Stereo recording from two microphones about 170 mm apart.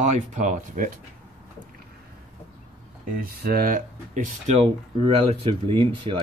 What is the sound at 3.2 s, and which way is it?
Speech, 60° right (ahead or behind).